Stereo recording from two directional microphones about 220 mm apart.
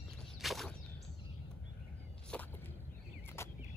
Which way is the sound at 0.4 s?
Centre (ahead or behind).